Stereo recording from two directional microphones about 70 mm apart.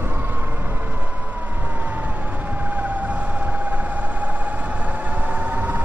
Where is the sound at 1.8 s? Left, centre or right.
Right.